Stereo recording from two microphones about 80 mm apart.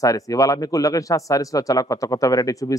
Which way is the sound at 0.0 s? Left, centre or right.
Left.